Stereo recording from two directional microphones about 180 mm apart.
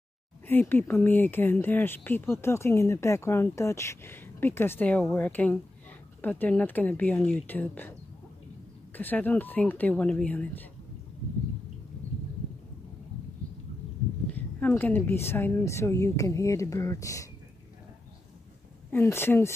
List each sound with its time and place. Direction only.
0.5 s speech: 10° left (ahead or behind)
8.9 s speech: 10° left (ahead or behind)
14.3 s speech: 10° left (ahead or behind)
18.9 s speech: 10° left (ahead or behind)